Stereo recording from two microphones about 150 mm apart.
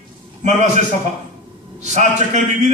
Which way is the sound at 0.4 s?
55° right (ahead or behind).